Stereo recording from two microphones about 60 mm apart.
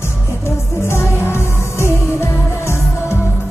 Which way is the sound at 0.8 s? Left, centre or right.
Left.